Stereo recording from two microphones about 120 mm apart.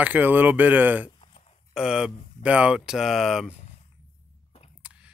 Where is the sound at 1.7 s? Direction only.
5° right (ahead or behind).